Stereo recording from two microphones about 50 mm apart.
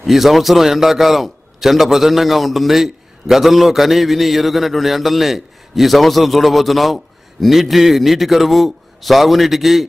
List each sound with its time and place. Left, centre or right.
0.0 s a man's voice: centre